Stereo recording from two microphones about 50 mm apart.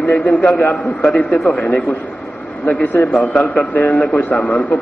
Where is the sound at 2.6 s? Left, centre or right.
Left.